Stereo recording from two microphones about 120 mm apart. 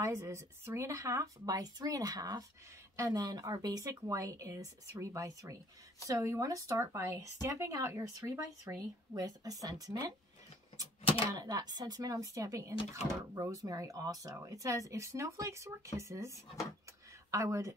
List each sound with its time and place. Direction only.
0.0 s speech: 25° right (ahead or behind)
11.3 s speech: 35° right (ahead or behind)